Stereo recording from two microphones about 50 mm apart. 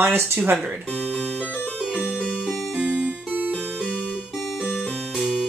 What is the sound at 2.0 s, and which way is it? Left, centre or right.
Music, left.